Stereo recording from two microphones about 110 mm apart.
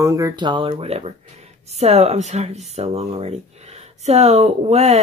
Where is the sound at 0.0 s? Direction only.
30° right (ahead or behind).